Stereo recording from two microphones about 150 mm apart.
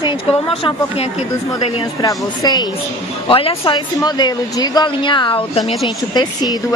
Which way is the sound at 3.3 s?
35° left (ahead or behind).